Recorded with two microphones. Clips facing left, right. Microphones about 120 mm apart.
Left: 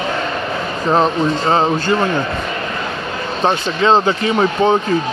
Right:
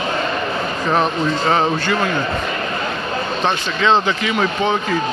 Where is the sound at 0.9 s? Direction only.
30° left (ahead or behind).